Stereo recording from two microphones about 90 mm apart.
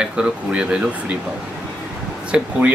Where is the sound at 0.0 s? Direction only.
10° right (ahead or behind).